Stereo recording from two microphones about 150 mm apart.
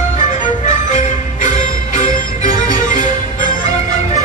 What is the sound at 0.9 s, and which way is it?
Music, 55° left (ahead or behind).